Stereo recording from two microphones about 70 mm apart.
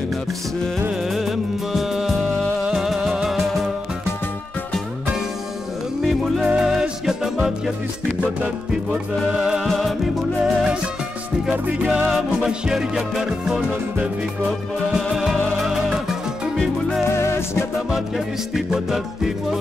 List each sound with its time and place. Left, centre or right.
1.1 s music: centre
6.2 s music: centre
9.3 s music: centre
9.7 s music: centre
10.4 s music: centre
12.1 s music: centre
15.1 s music: centre
17.1 s music: left
17.9 s music: centre